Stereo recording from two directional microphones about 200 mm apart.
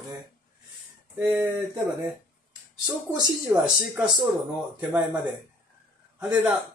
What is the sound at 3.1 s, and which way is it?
Speech, 15° right (ahead or behind).